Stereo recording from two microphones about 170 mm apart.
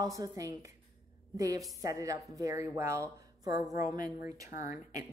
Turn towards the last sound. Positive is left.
turn(degrees=-20)  # may be behind; listen again after turning